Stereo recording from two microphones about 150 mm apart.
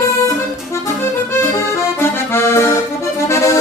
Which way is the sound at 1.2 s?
15° left (ahead or behind).